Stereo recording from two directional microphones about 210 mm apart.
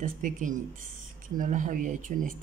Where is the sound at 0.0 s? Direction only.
40° right (ahead or behind).